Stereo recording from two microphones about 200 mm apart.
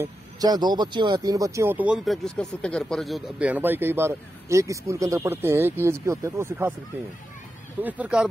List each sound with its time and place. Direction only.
0.0 s speech: 20° right (ahead or behind)
7.8 s speech: 5° right (ahead or behind)